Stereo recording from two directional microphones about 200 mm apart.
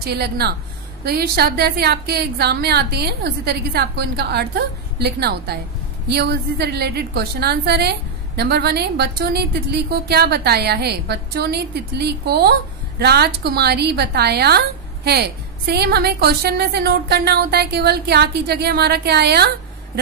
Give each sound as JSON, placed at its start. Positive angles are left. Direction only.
{"t": 0.0, "sound": "a woman's voice", "side_deg": -55}